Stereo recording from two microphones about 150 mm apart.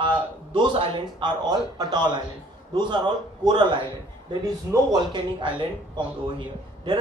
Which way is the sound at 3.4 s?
30° right (ahead or behind).